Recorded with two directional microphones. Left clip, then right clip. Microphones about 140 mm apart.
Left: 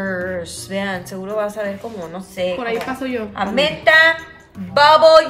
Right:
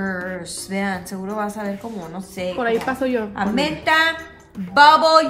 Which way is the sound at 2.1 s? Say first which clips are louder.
Left 3 dB; 55° left (ahead or behind).